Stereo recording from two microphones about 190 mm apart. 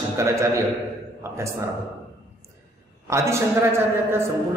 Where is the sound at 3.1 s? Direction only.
15° right (ahead or behind).